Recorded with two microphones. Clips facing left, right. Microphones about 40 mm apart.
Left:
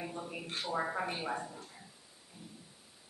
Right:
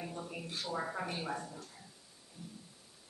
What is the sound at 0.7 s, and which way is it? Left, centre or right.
A man's voice, centre.